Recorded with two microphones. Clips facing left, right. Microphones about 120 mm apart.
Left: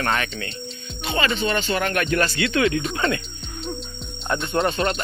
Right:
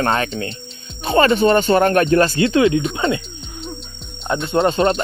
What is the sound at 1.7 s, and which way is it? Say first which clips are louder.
Speech: right 9 dB; 35° right (ahead or behind).